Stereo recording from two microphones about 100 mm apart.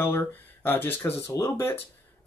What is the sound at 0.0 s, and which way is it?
Speech, 20° left (ahead or behind).